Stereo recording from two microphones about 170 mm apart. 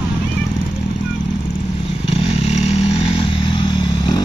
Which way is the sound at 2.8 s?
30° left (ahead or behind).